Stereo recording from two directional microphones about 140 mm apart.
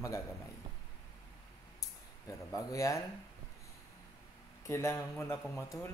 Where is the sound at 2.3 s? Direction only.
25° left (ahead or behind).